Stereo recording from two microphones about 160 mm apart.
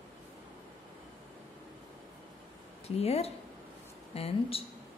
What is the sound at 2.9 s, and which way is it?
Speech, 40° left (ahead or behind).